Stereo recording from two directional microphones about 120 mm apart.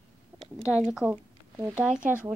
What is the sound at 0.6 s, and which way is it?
Speech, 25° left (ahead or behind).